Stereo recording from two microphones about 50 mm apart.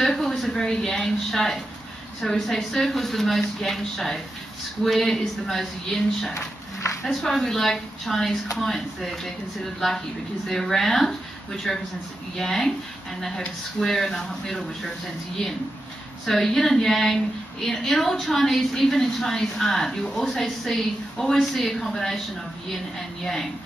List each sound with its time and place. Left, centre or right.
0.0 s a sound: centre
2.2 s a woman's voice: centre
13.7 s a woman's voice: centre
16.3 s a woman's voice: centre